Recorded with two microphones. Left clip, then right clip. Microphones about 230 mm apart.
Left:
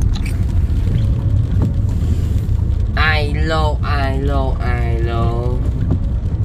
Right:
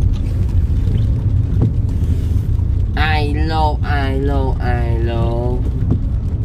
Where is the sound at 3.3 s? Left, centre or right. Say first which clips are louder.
Right 1 dB; centre.